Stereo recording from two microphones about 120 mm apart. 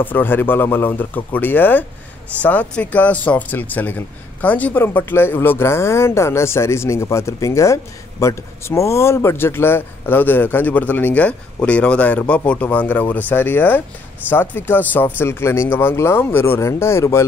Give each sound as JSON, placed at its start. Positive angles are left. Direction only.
{"t": 0.0, "sound": "speech", "side_deg": 15}